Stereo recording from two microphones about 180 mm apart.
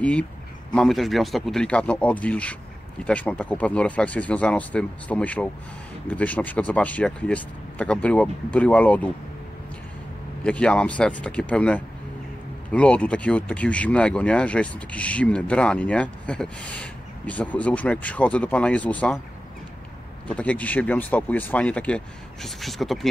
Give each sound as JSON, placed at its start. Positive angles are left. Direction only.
{"t": 0.0, "sound": "speech", "side_deg": 5}
{"t": 10.4, "sound": "speech", "side_deg": 5}
{"t": 20.3, "sound": "speech", "side_deg": 10}